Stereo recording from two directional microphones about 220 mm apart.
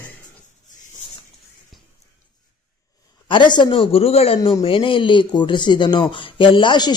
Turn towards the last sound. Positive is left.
turn(degrees=20)  # may be behind; listen again after turning